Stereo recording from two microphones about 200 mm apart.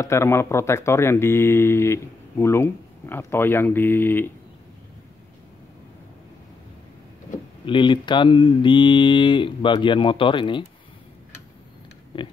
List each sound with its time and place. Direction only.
0.0 s speech: 15° left (ahead or behind)
7.6 s speech: 25° left (ahead or behind)
12.1 s speech: 25° left (ahead or behind)